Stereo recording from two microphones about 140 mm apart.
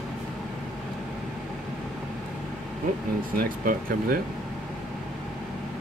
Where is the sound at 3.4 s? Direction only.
90° right.